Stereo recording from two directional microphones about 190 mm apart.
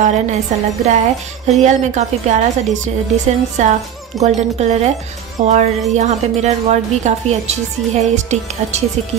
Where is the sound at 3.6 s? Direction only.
35° right (ahead or behind).